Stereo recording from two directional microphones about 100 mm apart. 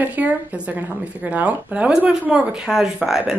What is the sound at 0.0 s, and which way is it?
A woman's voice, 15° right (ahead or behind).